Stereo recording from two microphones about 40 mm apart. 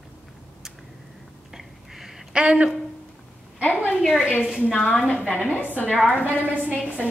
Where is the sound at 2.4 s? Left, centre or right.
Right.